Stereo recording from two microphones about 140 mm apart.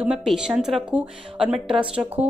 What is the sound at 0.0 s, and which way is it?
A woman's voice, 5° right (ahead or behind).